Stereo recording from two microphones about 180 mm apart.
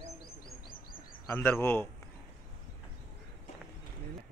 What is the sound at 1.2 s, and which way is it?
Speech, 10° left (ahead or behind).